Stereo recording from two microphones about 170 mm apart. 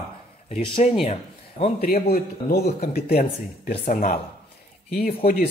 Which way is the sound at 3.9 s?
55° left (ahead or behind).